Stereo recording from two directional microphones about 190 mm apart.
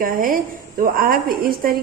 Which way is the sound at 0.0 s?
45° right (ahead or behind).